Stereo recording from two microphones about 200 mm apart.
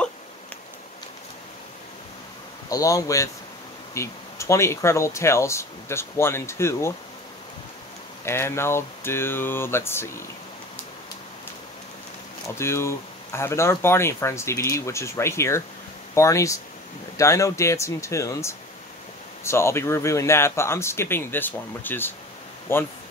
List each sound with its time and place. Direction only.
2.7 s speech: 15° left (ahead or behind)
8.3 s speech: 15° left (ahead or behind)
12.5 s speech: 15° left (ahead or behind)